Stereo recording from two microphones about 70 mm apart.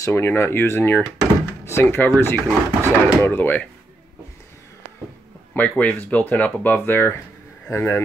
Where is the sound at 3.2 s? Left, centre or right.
Left.